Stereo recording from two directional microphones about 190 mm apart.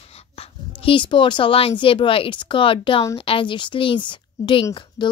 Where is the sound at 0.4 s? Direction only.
30° left (ahead or behind).